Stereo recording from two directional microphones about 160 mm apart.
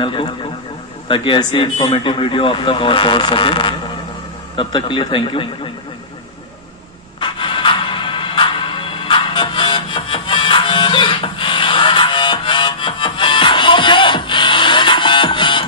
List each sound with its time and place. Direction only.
0.0 s a man's voice: 30° left (ahead or behind)
7.2 s music: 30° left (ahead or behind)